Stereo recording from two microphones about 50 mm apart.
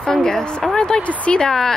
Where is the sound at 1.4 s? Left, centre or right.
Centre.